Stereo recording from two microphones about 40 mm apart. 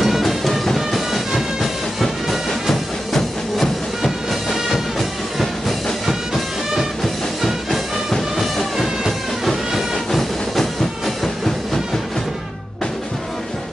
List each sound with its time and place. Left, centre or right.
0.0 s music: centre
6.0 s music: centre
8.7 s music: centre
10.1 s train: centre
11.4 s music: centre